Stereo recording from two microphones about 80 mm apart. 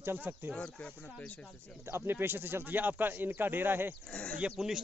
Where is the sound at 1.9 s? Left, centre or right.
Right.